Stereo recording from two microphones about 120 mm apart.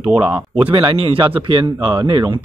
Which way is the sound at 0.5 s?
45° right (ahead or behind).